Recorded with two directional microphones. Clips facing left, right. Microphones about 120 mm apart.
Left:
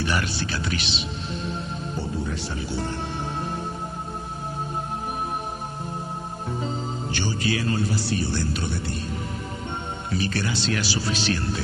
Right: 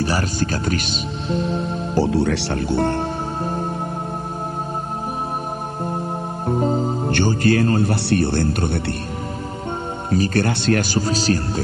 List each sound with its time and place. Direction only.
0.0 s speech: 40° right (ahead or behind)
2.0 s speech: 85° right; by 3.1 s 60° right (ahead or behind)
6.4 s speech: 50° right (ahead or behind)
10.0 s speech: 45° right (ahead or behind)